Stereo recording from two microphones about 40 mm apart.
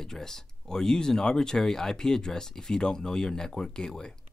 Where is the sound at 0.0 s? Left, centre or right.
Centre.